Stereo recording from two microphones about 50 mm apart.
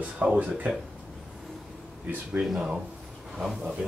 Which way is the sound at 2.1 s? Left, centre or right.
Right.